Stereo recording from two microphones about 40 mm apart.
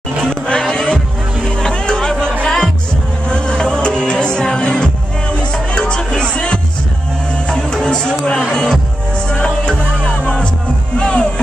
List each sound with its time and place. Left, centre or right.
0.3 s music: centre